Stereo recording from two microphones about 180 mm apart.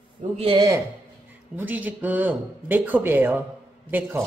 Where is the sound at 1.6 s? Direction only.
10° right (ahead or behind).